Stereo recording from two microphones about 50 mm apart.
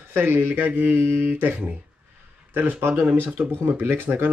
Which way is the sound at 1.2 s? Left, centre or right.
Right.